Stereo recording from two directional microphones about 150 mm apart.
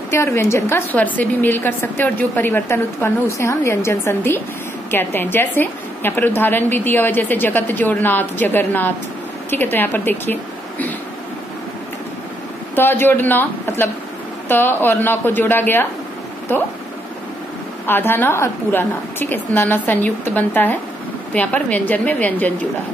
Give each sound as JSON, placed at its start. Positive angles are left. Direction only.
{"t": 0.1, "sound": "a woman's voice", "side_deg": 20}
{"t": 12.7, "sound": "a woman's voice", "side_deg": 15}
{"t": 17.8, "sound": "a woman's voice", "side_deg": 15}